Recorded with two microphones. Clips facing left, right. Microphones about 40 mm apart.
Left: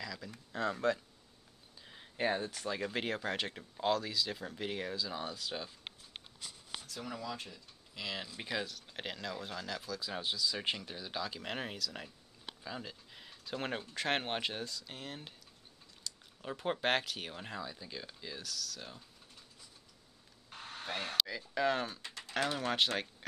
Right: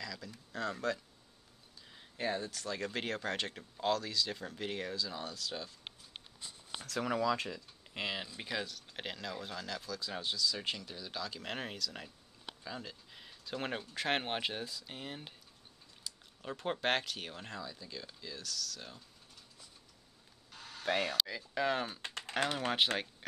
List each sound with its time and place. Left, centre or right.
0.0 s a sound: centre
0.5 s speech: centre
6.8 s speech: right
8.0 s speech: right
8.4 s speech: centre
11.4 s speech: centre
16.1 s a sound: centre
16.4 s speech: centre
18.5 s speech: centre
20.4 s a sound: left
20.8 s speech: right
21.5 s speech: centre
22.0 s typing: right
22.4 s speech: right